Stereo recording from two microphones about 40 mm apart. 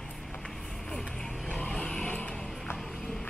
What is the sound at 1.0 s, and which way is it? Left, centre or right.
Vehicle, centre.